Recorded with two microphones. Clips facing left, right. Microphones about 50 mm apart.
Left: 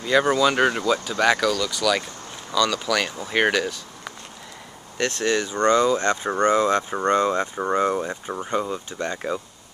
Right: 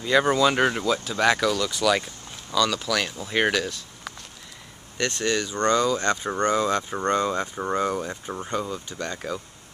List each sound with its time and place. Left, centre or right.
0.0 s speech: centre
0.9 s speech: centre
1.5 s speech: centre
2.5 s speech: centre; by 9.4 s left